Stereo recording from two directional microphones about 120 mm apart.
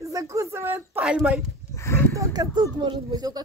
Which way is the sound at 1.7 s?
25° left (ahead or behind).